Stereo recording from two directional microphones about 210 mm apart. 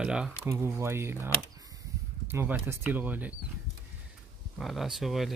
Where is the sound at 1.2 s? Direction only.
15° right (ahead or behind).